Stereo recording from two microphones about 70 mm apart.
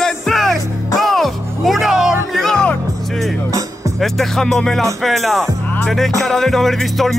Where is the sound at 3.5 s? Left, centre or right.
Right.